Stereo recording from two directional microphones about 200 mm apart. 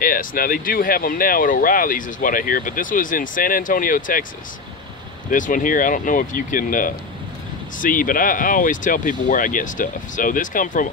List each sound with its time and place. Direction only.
0.0 s speech: 45° left (ahead or behind)
5.3 s speech: 40° left (ahead or behind)